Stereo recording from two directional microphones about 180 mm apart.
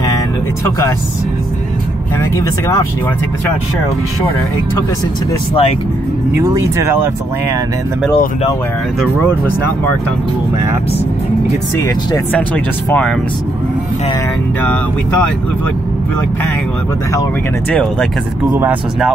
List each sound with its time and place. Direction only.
2.3 s speech: 15° left (ahead or behind)
5.5 s speech: 30° left (ahead or behind)
6.3 s speech: 20° right (ahead or behind)
12.3 s speech: 10° left (ahead or behind)
18.5 s speech: 10° right (ahead or behind)